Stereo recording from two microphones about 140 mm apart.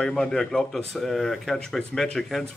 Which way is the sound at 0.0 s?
5° left (ahead or behind).